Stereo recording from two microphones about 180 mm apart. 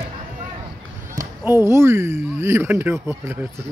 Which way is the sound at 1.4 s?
15° right (ahead or behind).